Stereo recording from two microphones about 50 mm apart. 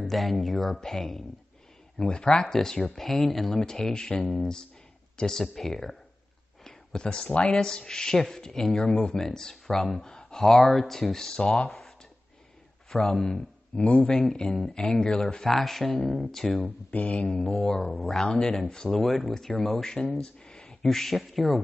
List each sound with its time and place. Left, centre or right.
0.0 s speech: centre
7.5 s speech: centre
8.8 s speech: left
12.9 s speech: centre
13.7 s a sound: left
14.3 s speech: centre
16.6 s a sound: left
17.6 s speech: centre